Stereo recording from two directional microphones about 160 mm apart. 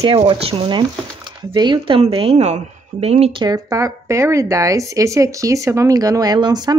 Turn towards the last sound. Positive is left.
turn(degrees=-25)  # may be behind; listen again after turning